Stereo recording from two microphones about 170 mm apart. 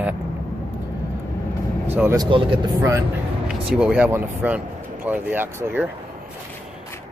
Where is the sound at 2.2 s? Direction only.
30° right (ahead or behind).